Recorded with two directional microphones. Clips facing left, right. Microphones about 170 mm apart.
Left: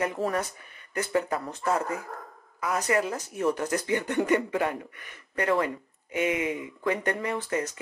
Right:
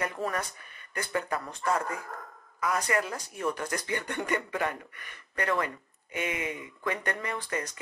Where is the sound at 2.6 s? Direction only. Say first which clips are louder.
Left 3 dB; 10° left (ahead or behind).